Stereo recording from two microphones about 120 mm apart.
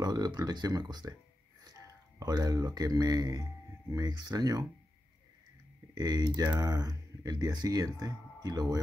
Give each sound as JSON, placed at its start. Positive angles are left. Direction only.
{"t": 0.0, "sound": "speech", "side_deg": -35}
{"t": 5.9, "sound": "speech", "side_deg": -35}